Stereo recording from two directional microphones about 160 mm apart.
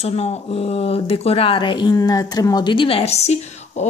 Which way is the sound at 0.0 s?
40° left (ahead or behind).